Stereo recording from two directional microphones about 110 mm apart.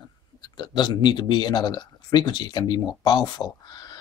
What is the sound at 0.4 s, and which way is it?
Speech, 40° left (ahead or behind).